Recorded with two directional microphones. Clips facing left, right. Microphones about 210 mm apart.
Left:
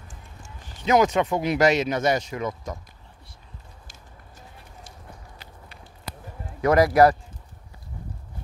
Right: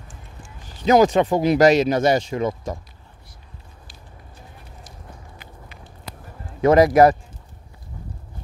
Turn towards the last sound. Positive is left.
turn(degrees=-20)  # may be behind; listen again after turning